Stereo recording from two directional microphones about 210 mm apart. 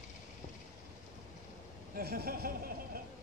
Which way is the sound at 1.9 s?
45° right (ahead or behind).